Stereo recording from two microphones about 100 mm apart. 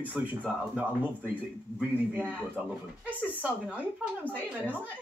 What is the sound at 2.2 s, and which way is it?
Speech, 15° right (ahead or behind).